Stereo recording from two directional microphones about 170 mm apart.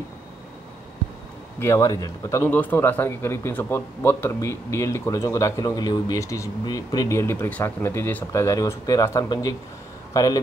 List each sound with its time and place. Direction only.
1.6 s a man's voice: 15° left (ahead or behind)